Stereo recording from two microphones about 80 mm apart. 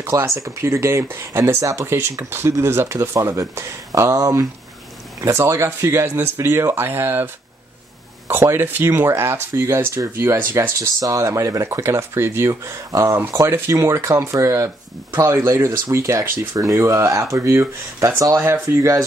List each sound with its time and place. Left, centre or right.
0.0 s speech: right
8.3 s speech: right